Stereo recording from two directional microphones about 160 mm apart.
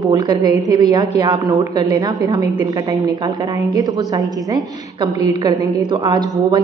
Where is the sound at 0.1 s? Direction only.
25° right (ahead or behind).